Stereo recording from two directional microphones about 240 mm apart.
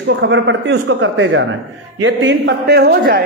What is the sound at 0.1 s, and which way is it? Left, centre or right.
A man's voice, right.